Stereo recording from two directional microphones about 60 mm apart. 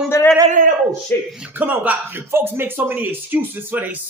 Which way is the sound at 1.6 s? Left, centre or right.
Right.